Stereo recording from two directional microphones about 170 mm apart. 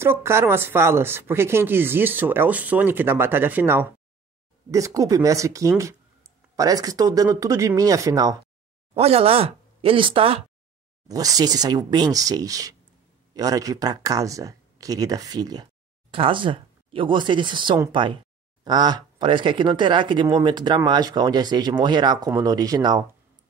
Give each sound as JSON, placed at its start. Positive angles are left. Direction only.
{"t": 0.0, "sound": "speech", "side_deg": -15}
{"t": 8.9, "sound": "speech", "side_deg": -35}
{"t": 11.1, "sound": "speech", "side_deg": -20}